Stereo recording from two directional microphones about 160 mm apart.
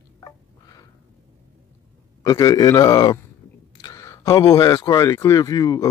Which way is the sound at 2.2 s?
25° left (ahead or behind).